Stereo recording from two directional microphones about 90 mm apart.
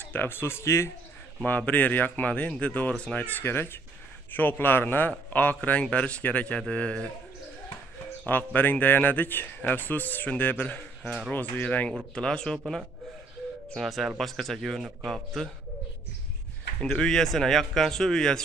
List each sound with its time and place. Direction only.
0.0 s speech: 20° left (ahead or behind)
1.7 s speech: 20° left (ahead or behind)
8.5 s a man's voice: 20° left (ahead or behind); by 15.5 s centre (ahead or behind)
16.8 s a man's voice: 10° left (ahead or behind)